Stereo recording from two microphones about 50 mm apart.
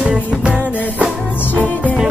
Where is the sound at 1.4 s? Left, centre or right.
Left.